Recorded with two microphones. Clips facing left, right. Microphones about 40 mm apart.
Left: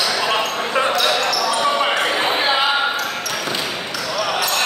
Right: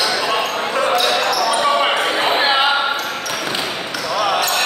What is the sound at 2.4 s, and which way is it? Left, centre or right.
Basketball bounce, centre.